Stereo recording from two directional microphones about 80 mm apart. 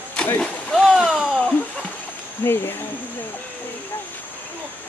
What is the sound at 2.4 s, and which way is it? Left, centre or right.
Speech, left.